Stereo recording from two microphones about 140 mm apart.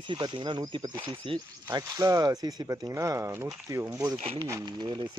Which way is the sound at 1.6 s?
25° right (ahead or behind).